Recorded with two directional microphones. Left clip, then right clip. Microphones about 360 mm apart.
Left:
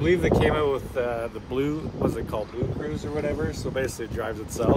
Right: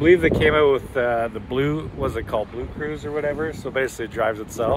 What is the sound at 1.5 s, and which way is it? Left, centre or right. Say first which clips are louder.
Speech: right 4 dB; centre.